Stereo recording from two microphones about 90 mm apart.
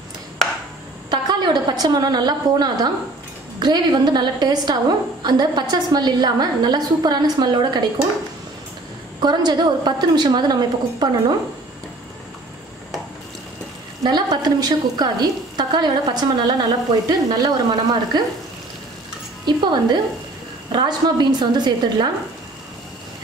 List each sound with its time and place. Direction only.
1.1 s a woman's voice: 55° right (ahead or behind)
9.2 s a woman's voice: 50° right (ahead or behind)
14.0 s a woman's voice: 50° right (ahead or behind)
19.4 s a woman's voice: 55° right (ahead or behind)